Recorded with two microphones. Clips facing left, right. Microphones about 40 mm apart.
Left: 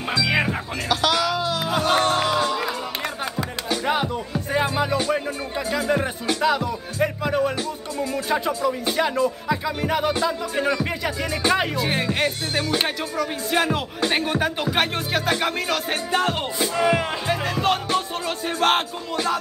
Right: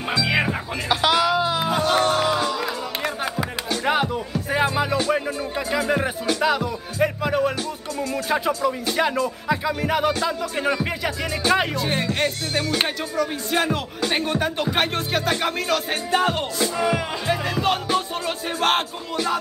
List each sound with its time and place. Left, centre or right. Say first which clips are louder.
0.1 s music: even; centre
0.8 s music: right 2 dB; centre
1.8 s music: left 1 dB; centre
3.3 s music: even; centre
5.7 s speech: even; centre
6.2 s music: left 1 dB; centre
16.5 s music: left 1 dB; centre
17.3 s music: right 1 dB; centre